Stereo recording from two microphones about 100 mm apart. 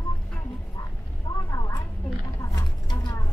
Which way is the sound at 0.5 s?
40° left (ahead or behind).